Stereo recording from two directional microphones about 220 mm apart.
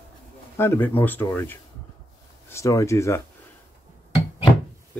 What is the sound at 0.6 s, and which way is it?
Speech, 10° left (ahead or behind).